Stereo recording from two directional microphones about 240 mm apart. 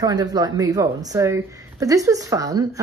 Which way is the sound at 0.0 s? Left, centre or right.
Centre.